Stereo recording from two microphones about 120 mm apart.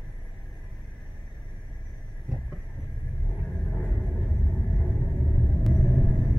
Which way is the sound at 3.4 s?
Centre (ahead or behind).